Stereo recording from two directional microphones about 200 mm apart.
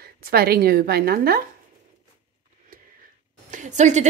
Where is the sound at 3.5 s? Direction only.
35° right (ahead or behind).